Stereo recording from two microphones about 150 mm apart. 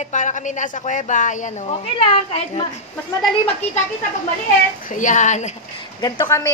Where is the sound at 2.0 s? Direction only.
35° left (ahead or behind).